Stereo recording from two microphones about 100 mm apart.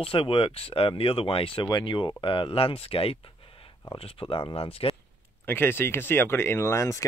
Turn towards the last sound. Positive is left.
turn(degrees=30)  # may be behind; listen again after turning